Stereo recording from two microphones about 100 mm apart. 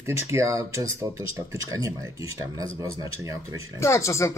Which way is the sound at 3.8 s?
30° left (ahead or behind).